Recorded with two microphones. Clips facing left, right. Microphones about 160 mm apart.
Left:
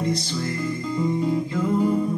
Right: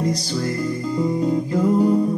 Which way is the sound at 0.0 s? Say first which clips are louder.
Right 3 dB; 35° right (ahead or behind).